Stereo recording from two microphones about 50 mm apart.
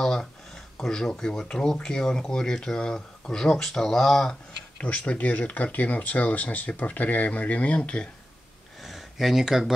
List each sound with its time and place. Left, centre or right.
0.0 s speech: centre
4.7 s speech: left
8.8 s a sound: centre